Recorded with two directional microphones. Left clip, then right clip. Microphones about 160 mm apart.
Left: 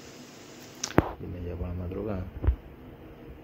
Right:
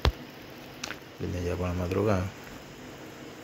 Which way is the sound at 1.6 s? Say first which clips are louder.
Right 8 dB; 20° right (ahead or behind).